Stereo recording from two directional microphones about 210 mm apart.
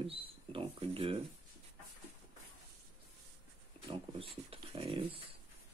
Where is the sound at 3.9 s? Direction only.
25° right (ahead or behind).